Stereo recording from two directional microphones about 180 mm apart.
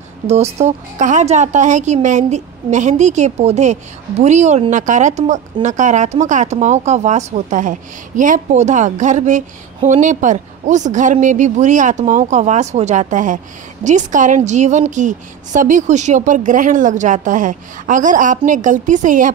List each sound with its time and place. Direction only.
0.3 s a woman's voice: 35° right (ahead or behind)